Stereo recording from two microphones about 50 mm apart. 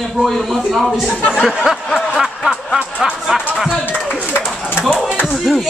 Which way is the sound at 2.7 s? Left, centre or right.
Centre.